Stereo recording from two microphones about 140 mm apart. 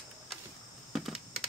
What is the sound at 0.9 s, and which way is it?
Computer keyboard, 5° right (ahead or behind).